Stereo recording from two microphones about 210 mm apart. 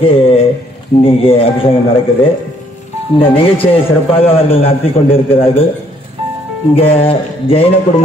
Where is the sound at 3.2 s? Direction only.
25° left (ahead or behind).